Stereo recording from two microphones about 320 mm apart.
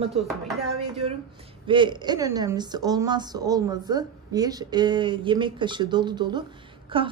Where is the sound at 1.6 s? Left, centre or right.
Centre.